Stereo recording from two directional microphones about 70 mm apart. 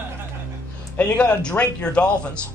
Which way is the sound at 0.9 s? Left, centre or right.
Centre.